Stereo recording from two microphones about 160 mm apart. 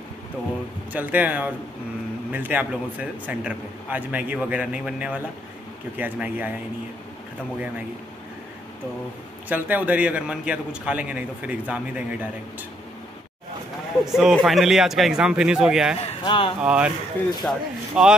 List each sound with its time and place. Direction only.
0.9 s a man's voice: 10° right (ahead or behind)
9.5 s a man's voice: 10° right (ahead or behind)
14.0 s a man's voice: centre (ahead or behind)
16.1 s speech: 35° left (ahead or behind)
16.6 s a man's voice: 5° right (ahead or behind)